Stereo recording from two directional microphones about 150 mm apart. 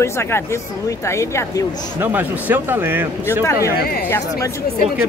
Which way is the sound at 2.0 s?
15° right (ahead or behind).